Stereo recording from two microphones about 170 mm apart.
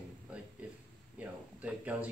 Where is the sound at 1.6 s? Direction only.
5° right (ahead or behind).